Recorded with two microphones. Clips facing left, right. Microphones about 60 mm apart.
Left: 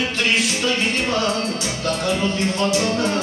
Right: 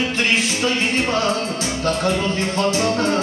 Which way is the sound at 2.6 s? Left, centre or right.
Right.